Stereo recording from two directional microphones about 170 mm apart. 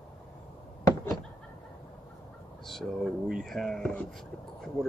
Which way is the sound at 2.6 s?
Centre (ahead or behind).